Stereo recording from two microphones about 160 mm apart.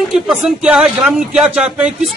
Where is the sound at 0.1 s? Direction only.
Centre (ahead or behind).